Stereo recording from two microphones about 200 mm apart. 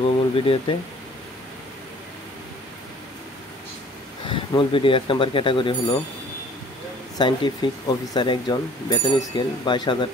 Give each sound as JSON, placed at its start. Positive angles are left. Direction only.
{"t": 0.0, "sound": "speech", "side_deg": 30}
{"t": 4.3, "sound": "speech", "side_deg": 25}
{"t": 7.2, "sound": "speech", "side_deg": 25}